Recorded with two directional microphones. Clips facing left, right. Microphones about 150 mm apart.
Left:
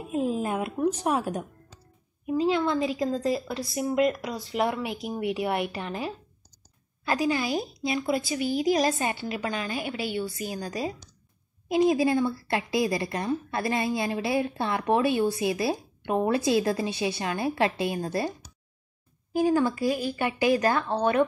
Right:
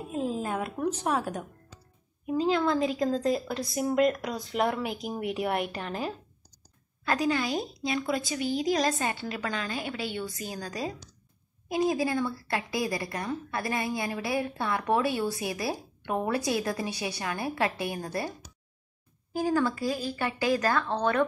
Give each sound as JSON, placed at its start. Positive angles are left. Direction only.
{"t": 0.1, "sound": "a woman's voice", "side_deg": 15}
{"t": 11.7, "sound": "a woman's voice", "side_deg": 20}
{"t": 19.3, "sound": "a woman's voice", "side_deg": 20}